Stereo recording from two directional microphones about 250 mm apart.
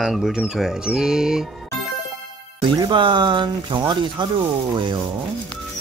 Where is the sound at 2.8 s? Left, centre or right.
Centre.